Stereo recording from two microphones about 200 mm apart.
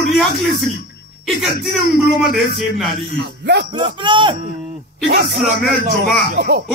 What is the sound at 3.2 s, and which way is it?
Speech, 55° right (ahead or behind).